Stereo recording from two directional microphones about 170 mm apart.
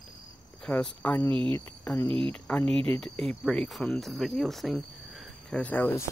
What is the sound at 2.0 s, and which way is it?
Speech, 30° right (ahead or behind).